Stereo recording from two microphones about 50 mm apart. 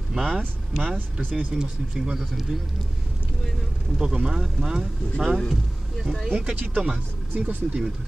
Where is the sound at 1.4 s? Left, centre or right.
Centre.